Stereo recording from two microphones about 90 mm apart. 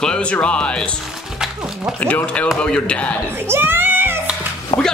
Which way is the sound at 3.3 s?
25° right (ahead or behind).